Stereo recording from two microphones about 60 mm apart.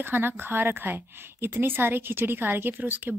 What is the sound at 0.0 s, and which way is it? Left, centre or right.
A woman's voice, right.